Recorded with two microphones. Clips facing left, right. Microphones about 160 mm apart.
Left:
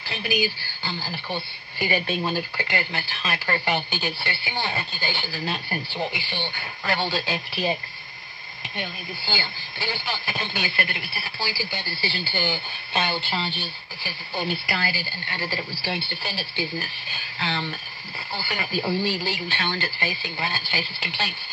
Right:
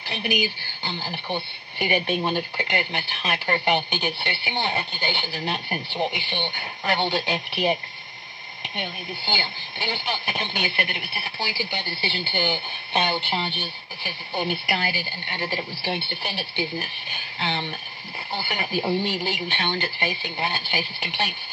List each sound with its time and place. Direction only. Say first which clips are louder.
0.0 s speech: even; 20° right (ahead or behind)